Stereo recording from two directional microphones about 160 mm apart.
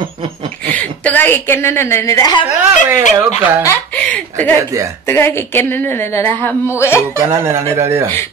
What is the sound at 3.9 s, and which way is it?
Speech, 10° left (ahead or behind).